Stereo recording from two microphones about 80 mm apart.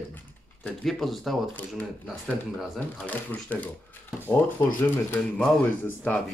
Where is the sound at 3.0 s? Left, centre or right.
Left.